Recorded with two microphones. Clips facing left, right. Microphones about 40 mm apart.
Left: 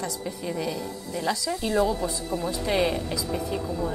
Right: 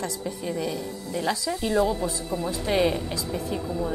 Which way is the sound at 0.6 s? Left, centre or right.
Right.